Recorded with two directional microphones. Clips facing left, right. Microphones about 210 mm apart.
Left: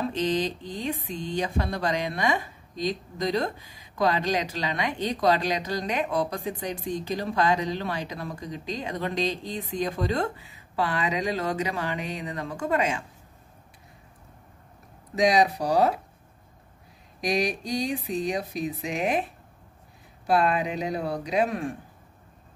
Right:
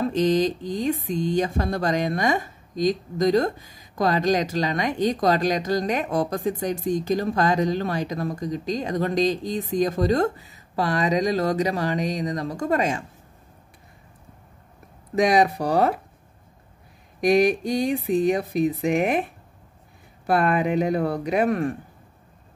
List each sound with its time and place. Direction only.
0.1 s speech: 45° right (ahead or behind)
15.1 s speech: 55° right (ahead or behind)
17.2 s speech: 55° right (ahead or behind)
20.2 s speech: 55° right (ahead or behind)